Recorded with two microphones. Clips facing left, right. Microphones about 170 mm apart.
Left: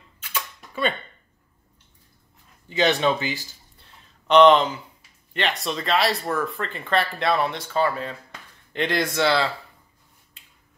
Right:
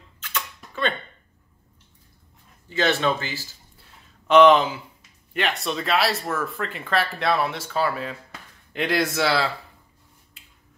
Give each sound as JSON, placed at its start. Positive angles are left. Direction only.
{"t": 0.2, "sound": "a sound", "side_deg": 10}
{"t": 2.7, "sound": "speech", "side_deg": 15}
{"t": 4.3, "sound": "speech", "side_deg": -5}